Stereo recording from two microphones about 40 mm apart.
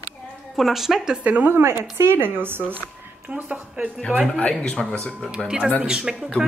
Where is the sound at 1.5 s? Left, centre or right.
Right.